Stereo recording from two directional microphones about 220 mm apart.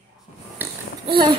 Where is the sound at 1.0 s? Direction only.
20° right (ahead or behind).